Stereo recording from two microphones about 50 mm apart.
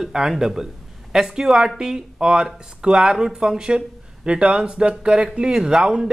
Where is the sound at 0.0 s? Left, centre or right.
Centre.